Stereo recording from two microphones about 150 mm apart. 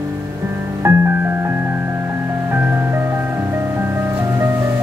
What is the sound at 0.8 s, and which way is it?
Music, 15° right (ahead or behind).